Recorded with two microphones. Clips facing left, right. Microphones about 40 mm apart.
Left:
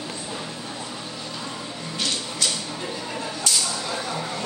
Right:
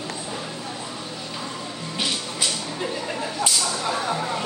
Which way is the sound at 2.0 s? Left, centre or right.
Centre.